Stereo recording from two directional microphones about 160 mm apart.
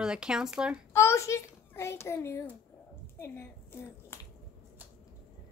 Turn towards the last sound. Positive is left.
turn(degrees=15)  # may be behind; listen again after turning